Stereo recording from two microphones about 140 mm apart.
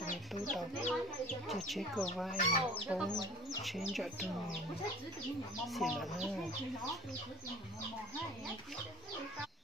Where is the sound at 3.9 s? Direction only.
Centre (ahead or behind).